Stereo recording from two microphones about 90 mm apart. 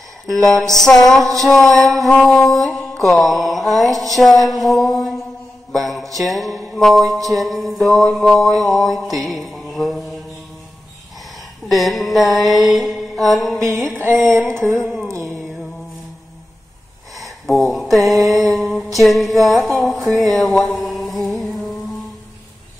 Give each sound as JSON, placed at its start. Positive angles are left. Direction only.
{"t": 0.3, "sound": "music", "side_deg": 5}
{"t": 11.7, "sound": "music", "side_deg": 0}
{"t": 14.3, "sound": "a sound", "side_deg": -25}
{"t": 15.0, "sound": "music", "side_deg": -30}
{"t": 17.2, "sound": "a sound", "side_deg": 0}
{"t": 17.7, "sound": "music", "side_deg": 0}
{"t": 20.8, "sound": "mantra", "side_deg": 0}